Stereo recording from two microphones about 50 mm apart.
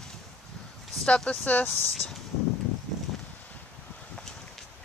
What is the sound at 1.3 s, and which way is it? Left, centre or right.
Speech, left.